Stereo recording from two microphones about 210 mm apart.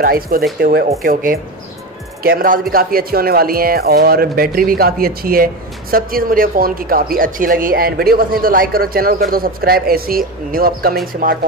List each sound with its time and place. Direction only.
0.0 s speech: 45° right (ahead or behind)